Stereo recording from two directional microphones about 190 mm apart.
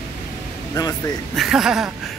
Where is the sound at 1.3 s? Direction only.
Centre (ahead or behind).